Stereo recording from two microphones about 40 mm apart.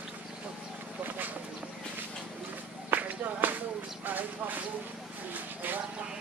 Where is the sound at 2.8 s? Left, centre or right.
Right.